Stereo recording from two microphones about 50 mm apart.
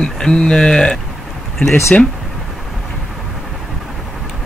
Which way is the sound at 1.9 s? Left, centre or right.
Left.